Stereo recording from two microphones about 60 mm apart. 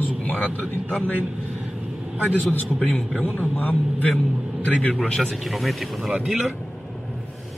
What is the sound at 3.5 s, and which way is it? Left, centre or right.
Speech, left.